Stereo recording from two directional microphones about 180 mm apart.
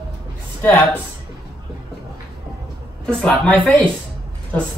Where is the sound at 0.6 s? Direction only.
10° left (ahead or behind).